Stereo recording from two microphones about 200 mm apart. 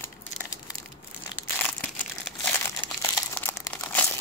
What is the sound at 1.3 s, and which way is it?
Crumpling, 10° left (ahead or behind).